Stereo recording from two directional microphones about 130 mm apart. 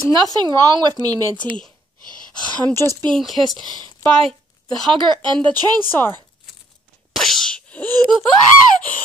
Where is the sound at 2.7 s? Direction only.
20° left (ahead or behind).